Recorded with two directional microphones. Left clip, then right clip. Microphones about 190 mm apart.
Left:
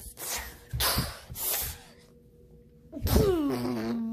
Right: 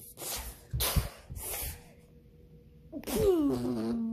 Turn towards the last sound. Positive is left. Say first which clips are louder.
# left 2 dB
turn(degrees=0)  # may be behind; listen again after turning